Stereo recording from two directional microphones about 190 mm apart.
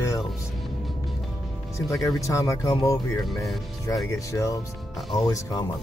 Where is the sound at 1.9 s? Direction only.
15° left (ahead or behind).